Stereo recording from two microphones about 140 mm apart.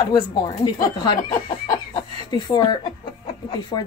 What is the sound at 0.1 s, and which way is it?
A woman's voice, 30° left (ahead or behind).